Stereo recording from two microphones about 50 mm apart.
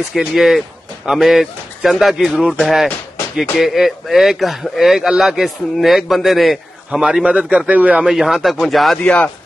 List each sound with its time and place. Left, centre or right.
0.1 s speech: centre
6.9 s a man's voice: centre
8.0 s speech: centre
8.9 s speech: centre